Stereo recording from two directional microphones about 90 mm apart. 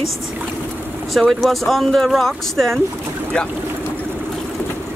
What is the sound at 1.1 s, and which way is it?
Speech, centre (ahead or behind).